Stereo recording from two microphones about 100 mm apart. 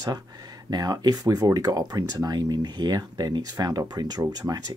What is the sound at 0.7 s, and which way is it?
Speech, 45° right (ahead or behind).